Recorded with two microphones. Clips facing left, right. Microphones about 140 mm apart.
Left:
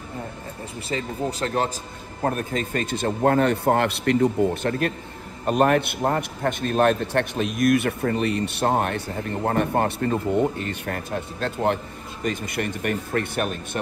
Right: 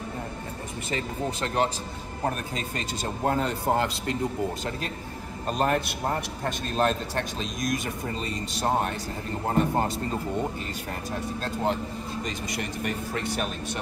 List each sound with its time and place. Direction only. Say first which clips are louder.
0.8 s speech: left 3 dB; 35° left (ahead or behind)
2.2 s a man's voice: left 5 dB; 50° left (ahead or behind)